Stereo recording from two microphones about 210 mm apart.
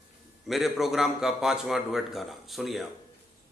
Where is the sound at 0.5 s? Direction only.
Centre (ahead or behind).